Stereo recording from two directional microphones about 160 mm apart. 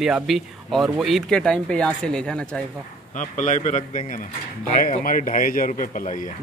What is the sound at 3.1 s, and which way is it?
A man's voice, 50° left (ahead or behind).